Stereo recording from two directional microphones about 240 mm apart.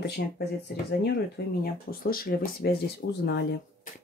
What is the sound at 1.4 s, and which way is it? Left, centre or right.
Speech, left.